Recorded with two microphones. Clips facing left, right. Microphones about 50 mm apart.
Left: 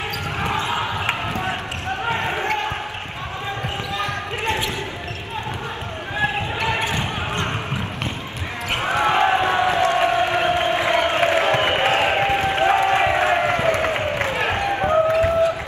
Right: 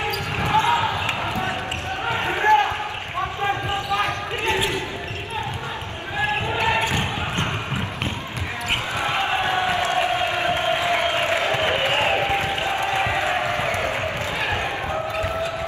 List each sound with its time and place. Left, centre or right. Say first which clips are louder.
0.5 s basketball bounce: right 6 dB; right
2.0 s basketball bounce: even; left
6.5 s basketball bounce: right 2 dB; right
8.8 s a sound: left 9 dB; left